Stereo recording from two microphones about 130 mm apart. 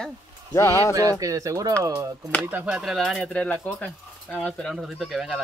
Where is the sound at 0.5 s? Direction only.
20° left (ahead or behind).